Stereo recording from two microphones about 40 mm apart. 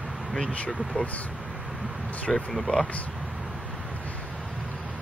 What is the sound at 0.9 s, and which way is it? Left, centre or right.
Speech, left.